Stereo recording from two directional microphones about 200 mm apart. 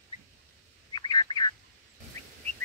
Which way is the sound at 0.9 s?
20° left (ahead or behind).